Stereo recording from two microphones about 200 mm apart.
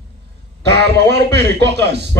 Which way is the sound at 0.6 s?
55° right (ahead or behind).